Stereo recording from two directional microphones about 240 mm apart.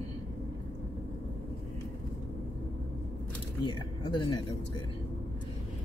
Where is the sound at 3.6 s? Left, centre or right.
Centre.